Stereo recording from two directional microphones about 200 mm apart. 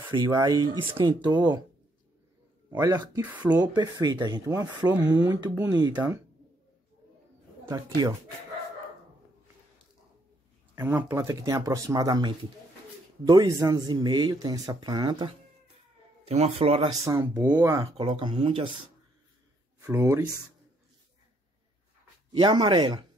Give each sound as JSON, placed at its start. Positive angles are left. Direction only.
{"t": 0.1, "sound": "speech", "side_deg": -20}
{"t": 2.7, "sound": "speech", "side_deg": -20}
{"t": 3.3, "sound": "speech", "side_deg": -5}
{"t": 3.6, "sound": "speech", "side_deg": -20}
{"t": 7.6, "sound": "speech", "side_deg": -15}
{"t": 10.7, "sound": "a man's voice", "side_deg": -15}
{"t": 17.0, "sound": "speech", "side_deg": -15}
{"t": 19.8, "sound": "speech", "side_deg": -15}
{"t": 22.4, "sound": "speech", "side_deg": -20}